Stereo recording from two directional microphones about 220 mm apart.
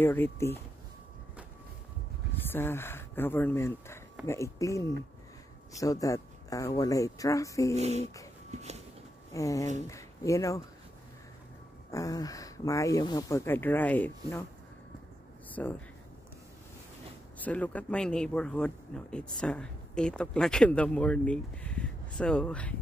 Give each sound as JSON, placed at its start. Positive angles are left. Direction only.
{"t": 0.0, "sound": "speech", "side_deg": 10}
{"t": 2.5, "sound": "speech", "side_deg": 10}
{"t": 7.7, "sound": "speech", "side_deg": -30}
{"t": 8.5, "sound": "a sound", "side_deg": -30}
{"t": 9.3, "sound": "speech", "side_deg": 15}
{"t": 11.9, "sound": "speech", "side_deg": 15}
{"t": 15.6, "sound": "speech", "side_deg": 5}
{"t": 17.4, "sound": "speech", "side_deg": 5}